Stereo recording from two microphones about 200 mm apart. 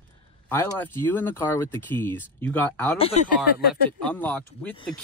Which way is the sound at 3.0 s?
30° left (ahead or behind).